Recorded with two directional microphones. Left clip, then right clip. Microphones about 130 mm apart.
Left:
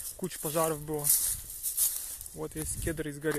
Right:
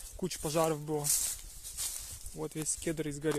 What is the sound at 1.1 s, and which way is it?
Speech, 15° left (ahead or behind).